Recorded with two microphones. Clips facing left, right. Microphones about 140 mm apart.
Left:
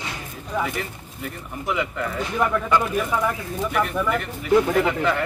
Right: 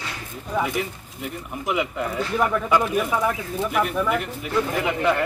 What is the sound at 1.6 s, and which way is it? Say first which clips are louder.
Speech: right 1 dB; 10° right (ahead or behind).